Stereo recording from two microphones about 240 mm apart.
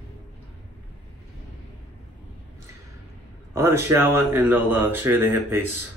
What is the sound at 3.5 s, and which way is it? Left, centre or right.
Speech, centre.